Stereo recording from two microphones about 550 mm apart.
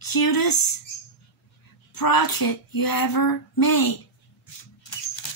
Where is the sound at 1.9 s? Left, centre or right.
Left.